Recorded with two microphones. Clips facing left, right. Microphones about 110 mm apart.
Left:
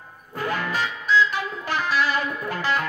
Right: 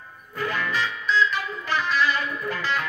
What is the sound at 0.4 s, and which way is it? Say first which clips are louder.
Music: left 1 dB; 45° left (ahead or behind).